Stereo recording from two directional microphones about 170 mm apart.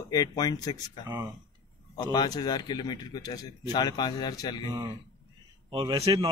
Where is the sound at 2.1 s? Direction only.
25° left (ahead or behind).